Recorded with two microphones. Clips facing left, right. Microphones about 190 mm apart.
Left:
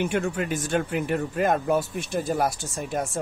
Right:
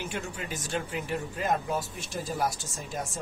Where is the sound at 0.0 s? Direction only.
60° left (ahead or behind).